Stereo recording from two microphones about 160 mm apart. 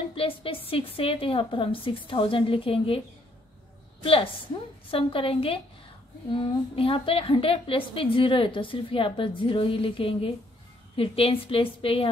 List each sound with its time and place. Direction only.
0.1 s a woman's voice: 35° left (ahead or behind)
4.0 s a woman's voice: 35° left (ahead or behind)